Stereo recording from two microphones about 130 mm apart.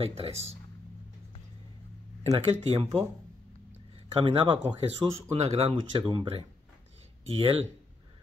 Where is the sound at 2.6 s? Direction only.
45° right (ahead or behind).